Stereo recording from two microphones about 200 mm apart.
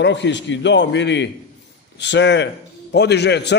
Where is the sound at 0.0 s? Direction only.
60° left (ahead or behind).